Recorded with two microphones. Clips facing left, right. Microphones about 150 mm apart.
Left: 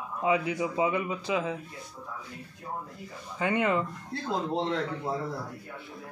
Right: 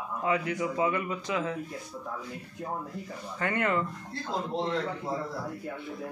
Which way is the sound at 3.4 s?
15° left (ahead or behind).